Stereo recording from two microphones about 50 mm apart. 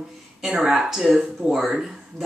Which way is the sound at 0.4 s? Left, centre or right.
Centre.